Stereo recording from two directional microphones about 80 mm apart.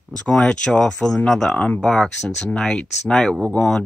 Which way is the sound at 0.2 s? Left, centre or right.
Centre.